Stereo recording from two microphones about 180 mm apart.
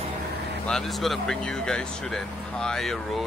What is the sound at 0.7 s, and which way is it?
Speech, 5° left (ahead or behind).